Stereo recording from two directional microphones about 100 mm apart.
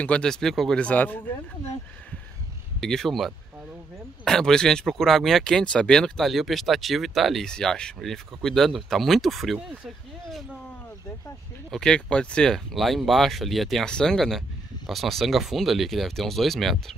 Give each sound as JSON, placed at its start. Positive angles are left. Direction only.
{"t": 0.0, "sound": "speech", "side_deg": 10}
{"t": 2.8, "sound": "speech", "side_deg": 5}
{"t": 11.7, "sound": "speech", "side_deg": 10}